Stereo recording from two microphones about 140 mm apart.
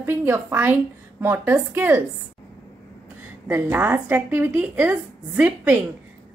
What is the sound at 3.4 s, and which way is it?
A woman's voice, 15° right (ahead or behind).